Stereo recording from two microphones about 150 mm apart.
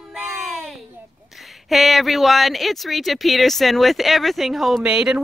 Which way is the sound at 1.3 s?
Centre (ahead or behind).